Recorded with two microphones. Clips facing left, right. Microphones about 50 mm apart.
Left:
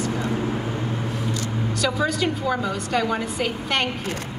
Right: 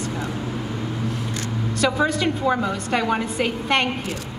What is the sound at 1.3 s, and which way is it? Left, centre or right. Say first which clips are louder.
Vehicle: left 1 dB; right.